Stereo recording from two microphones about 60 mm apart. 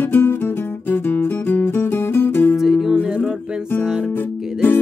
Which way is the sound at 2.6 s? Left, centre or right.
Centre.